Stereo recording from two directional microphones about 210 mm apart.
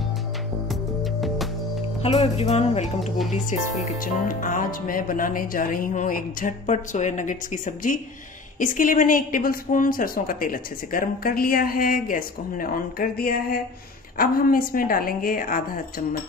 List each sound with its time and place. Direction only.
2.0 s a woman's voice: 30° left (ahead or behind)